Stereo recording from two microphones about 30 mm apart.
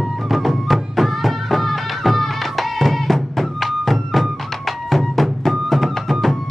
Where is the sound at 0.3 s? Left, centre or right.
Centre.